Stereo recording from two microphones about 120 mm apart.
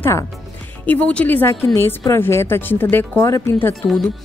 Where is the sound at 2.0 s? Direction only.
20° left (ahead or behind).